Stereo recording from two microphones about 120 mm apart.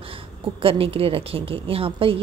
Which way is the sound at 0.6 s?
50° right (ahead or behind).